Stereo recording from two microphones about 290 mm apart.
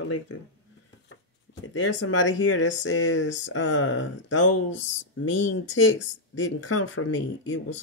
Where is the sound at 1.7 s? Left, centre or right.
Left.